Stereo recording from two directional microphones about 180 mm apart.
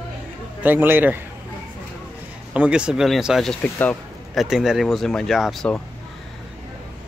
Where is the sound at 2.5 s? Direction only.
5° right (ahead or behind).